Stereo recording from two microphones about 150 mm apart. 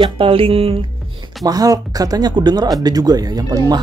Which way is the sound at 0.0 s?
35° right (ahead or behind).